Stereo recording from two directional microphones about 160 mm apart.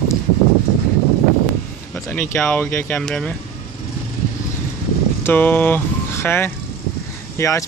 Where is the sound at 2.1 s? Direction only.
10° left (ahead or behind).